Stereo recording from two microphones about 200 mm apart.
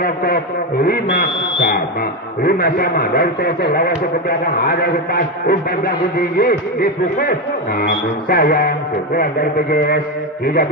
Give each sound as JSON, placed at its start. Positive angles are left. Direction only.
{"t": 0.0, "sound": "a man's voice", "side_deg": 45}